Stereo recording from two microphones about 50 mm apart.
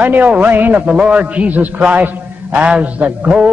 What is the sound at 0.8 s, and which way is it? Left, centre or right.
A man's voice, right.